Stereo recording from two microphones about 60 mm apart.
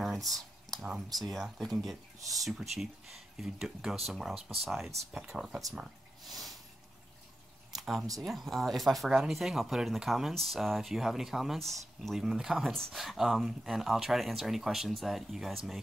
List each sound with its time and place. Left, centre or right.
0.0 s a sound: centre
1.1 s speech: centre
8.2 s speech: centre